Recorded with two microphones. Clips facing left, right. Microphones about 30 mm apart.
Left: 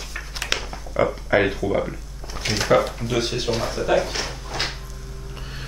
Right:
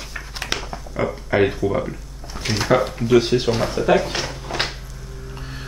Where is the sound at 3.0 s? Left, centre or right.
Centre.